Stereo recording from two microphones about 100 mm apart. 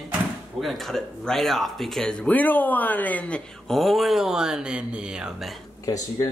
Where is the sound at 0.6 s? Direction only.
Centre (ahead or behind).